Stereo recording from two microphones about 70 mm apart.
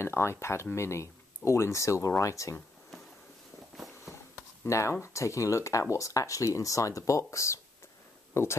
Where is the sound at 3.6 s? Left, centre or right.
Centre.